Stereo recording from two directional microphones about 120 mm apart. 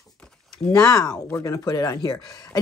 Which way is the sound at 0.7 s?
30° left (ahead or behind).